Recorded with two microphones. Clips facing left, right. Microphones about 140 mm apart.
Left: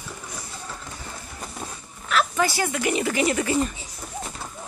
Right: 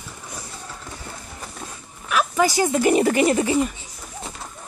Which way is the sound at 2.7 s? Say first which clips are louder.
Right 7 dB; 40° right (ahead or behind).